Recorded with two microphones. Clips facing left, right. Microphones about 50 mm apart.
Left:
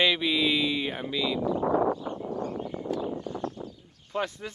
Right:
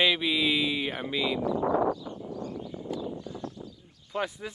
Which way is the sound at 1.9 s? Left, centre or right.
Left.